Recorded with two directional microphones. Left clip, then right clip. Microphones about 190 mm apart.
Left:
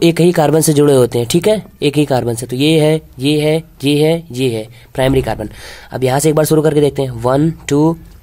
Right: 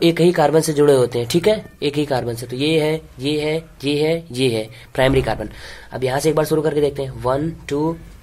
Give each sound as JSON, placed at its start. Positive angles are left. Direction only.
{"t": 0.0, "sound": "speech", "side_deg": 35}